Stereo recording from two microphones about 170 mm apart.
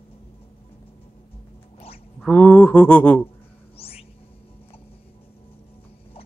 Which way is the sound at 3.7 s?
35° left (ahead or behind).